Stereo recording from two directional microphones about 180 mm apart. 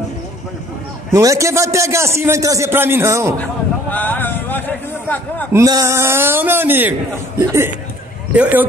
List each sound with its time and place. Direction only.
1.1 s a man's voice: 15° right (ahead or behind)
3.9 s a sound: 10° left (ahead or behind)
5.5 s a man's voice: 15° right (ahead or behind)